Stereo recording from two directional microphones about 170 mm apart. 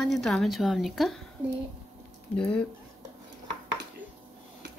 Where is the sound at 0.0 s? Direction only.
5° left (ahead or behind).